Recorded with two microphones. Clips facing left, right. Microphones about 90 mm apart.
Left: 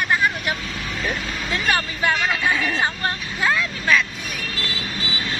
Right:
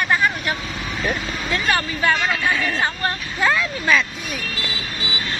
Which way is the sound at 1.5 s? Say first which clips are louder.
Right 1 dB; 10° left (ahead or behind).